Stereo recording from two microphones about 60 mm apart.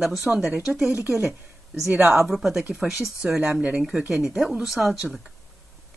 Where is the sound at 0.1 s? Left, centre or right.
Centre.